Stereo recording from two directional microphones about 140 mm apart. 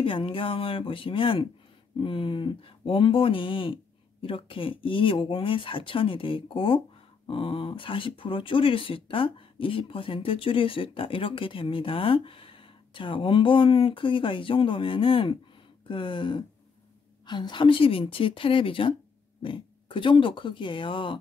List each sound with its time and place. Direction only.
0.0 s speech: 40° left (ahead or behind)